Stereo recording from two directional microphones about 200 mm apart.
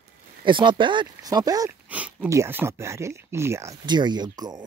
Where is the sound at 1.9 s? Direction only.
5° right (ahead or behind).